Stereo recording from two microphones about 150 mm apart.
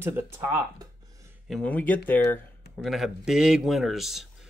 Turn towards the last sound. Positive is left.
turn(degrees=0)  # may be behind; listen again after turning